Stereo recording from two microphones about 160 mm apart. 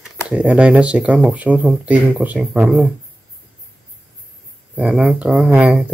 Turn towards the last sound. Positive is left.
turn(degrees=-10)  # may be behind; listen again after turning